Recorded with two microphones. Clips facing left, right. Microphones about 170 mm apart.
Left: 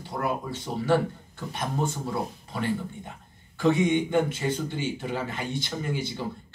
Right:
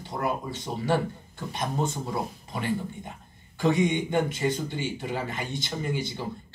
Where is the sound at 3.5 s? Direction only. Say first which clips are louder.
Left 1 dB; 15° right (ahead or behind).